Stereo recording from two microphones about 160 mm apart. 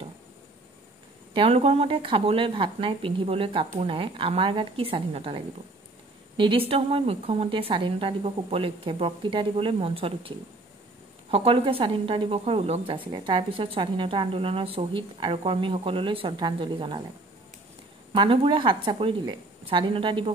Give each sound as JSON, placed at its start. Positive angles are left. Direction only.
{"t": 1.3, "sound": "speech", "side_deg": -35}
{"t": 18.1, "sound": "speech", "side_deg": -30}